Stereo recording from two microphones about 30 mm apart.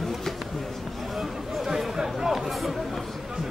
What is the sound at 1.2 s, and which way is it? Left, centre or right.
Chatter, centre.